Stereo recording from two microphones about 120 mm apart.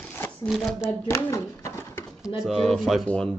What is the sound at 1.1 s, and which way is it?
Pigeon, 20° left (ahead or behind).